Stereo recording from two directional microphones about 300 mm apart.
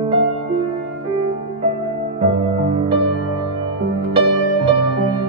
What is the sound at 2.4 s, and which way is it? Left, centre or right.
Music, centre.